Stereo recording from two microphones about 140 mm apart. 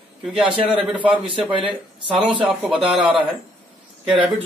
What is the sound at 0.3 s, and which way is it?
Speech, 5° right (ahead or behind).